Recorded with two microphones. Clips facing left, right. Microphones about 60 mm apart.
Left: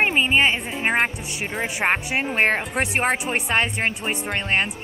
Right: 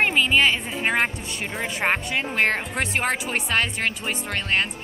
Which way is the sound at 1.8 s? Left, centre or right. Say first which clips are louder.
Left 1 dB; left.